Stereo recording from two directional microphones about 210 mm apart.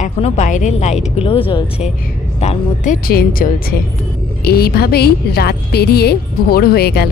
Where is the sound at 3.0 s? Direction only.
45° left (ahead or behind).